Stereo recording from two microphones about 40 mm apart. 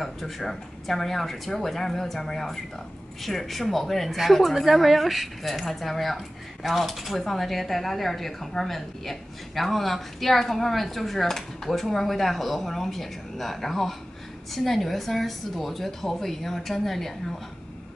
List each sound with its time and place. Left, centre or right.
0.0 s speech: centre